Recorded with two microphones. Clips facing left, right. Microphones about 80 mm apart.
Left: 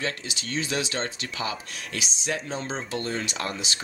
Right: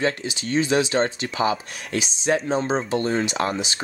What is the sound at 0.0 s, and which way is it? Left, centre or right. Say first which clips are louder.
Speech: right 7 dB; right.